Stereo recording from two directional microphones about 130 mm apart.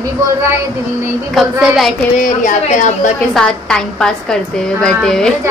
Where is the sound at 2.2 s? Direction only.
80° left.